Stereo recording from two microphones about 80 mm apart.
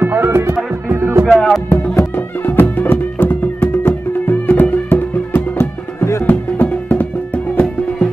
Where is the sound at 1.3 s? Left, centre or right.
Centre.